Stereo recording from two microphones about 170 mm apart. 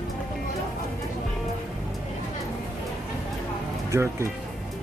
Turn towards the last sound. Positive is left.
turn(degrees=-15)  # may be behind; listen again after turning